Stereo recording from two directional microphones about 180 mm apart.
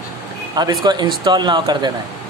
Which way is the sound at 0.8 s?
25° right (ahead or behind).